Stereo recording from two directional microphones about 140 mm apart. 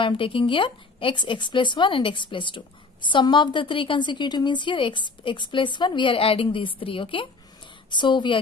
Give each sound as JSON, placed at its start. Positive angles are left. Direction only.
{"t": 0.0, "sound": "a woman's voice", "side_deg": 40}